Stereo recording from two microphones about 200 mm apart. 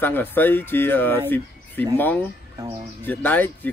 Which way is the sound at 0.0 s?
10° left (ahead or behind).